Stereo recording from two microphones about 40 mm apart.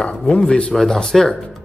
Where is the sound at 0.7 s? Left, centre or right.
Centre.